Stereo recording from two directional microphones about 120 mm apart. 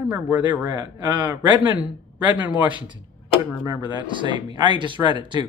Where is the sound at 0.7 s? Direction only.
40° right (ahead or behind).